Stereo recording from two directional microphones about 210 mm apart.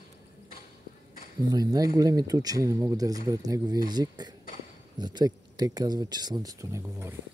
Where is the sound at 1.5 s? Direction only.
20° right (ahead or behind).